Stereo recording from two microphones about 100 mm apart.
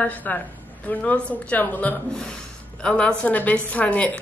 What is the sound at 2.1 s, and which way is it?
A woman's voice, 5° left (ahead or behind).